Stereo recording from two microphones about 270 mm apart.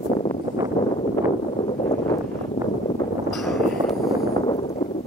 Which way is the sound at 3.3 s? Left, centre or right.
Centre.